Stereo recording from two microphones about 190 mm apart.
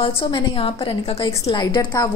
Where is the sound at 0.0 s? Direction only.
25° left (ahead or behind).